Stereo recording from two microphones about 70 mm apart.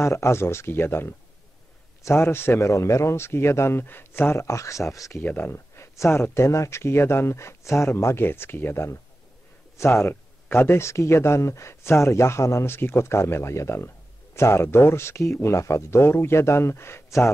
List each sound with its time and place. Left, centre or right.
0.0 s speech: left
5.2 s speech: left
5.8 s speech: left
12.7 s speech: left